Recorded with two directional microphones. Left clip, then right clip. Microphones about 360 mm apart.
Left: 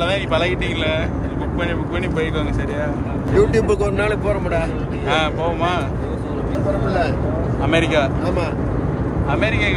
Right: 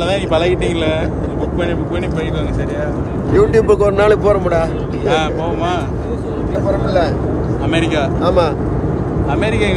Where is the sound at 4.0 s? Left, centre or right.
Right.